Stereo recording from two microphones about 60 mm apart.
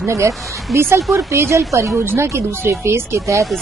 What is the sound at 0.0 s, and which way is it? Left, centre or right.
A woman's voice, right.